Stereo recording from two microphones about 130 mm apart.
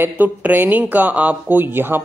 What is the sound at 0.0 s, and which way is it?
Speech, 15° right (ahead or behind).